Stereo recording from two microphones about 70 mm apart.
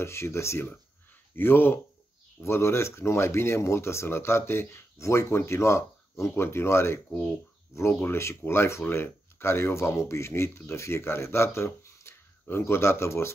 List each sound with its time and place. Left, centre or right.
0.0 s speech: left
7.1 s speech: centre
7.9 s speech: left